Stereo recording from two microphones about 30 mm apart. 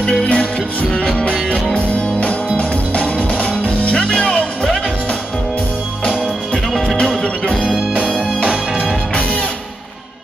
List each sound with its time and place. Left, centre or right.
0.2 s music: left
4.1 s music: left
7.0 s music: left